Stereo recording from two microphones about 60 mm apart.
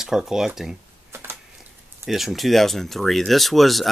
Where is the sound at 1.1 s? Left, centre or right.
Right.